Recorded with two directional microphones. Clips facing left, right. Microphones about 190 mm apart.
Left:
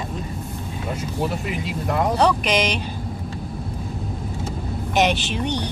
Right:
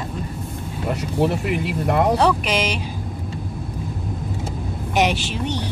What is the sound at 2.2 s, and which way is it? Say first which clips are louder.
Speech: even; 5° right (ahead or behind).